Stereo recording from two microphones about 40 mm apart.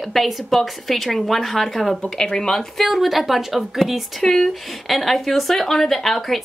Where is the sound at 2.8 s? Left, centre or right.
Centre.